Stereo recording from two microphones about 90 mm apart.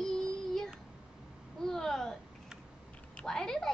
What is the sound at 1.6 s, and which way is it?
A woman's voice, 5° left (ahead or behind).